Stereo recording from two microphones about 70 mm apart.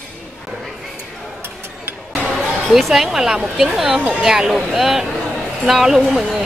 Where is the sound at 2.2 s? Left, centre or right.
Centre.